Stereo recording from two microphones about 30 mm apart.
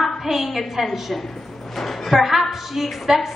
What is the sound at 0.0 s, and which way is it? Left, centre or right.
A woman's voice, centre.